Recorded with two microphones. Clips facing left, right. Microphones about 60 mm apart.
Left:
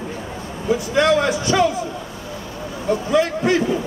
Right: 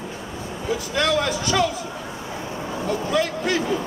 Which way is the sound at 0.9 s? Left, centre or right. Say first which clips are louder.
Left 5 dB; centre.